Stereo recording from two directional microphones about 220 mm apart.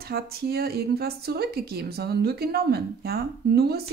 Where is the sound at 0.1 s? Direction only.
45° right (ahead or behind).